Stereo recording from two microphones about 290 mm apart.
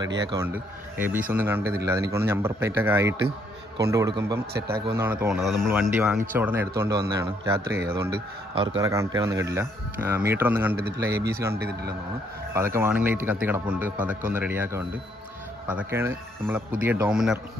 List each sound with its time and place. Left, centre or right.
0.3 s speech: centre
3.2 s a sound: right
3.8 s speech: centre